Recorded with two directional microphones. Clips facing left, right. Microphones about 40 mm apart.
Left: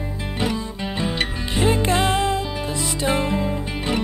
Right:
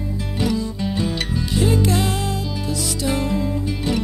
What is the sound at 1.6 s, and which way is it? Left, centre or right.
Music, left.